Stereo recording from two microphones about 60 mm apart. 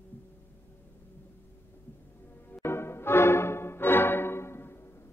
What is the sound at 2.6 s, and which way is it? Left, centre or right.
Music, left.